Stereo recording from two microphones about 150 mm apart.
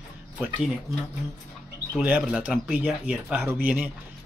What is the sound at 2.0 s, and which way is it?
Speech, 10° right (ahead or behind).